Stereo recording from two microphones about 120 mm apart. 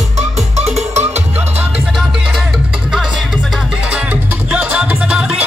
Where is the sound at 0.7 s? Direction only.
65° right (ahead or behind).